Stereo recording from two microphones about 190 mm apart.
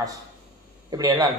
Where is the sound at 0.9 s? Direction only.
20° right (ahead or behind).